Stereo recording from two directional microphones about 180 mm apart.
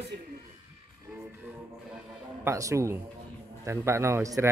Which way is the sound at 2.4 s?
15° right (ahead or behind).